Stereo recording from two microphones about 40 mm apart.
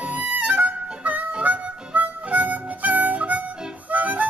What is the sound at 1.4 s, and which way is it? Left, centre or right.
Harmonica, right.